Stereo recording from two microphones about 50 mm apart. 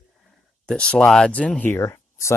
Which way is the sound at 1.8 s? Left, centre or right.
Left.